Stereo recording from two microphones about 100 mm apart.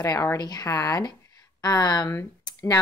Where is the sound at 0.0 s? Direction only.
35° left (ahead or behind).